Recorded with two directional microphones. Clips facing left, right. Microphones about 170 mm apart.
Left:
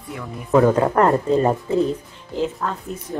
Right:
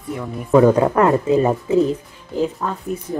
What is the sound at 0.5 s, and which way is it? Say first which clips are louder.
Speech: right 2 dB; 5° right (ahead or behind).